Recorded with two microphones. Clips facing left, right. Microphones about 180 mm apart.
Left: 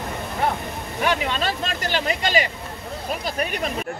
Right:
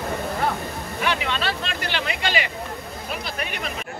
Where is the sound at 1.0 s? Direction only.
45° left (ahead or behind).